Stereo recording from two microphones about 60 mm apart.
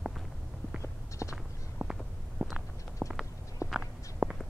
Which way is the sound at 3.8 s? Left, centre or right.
Centre.